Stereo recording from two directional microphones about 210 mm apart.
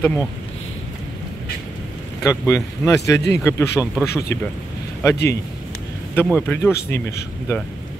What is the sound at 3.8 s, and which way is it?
Speech, 5° right (ahead or behind).